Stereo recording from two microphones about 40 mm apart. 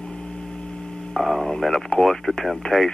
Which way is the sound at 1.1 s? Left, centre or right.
Centre.